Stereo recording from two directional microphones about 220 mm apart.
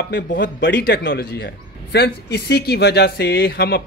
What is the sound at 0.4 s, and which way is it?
A man's voice, 55° left (ahead or behind).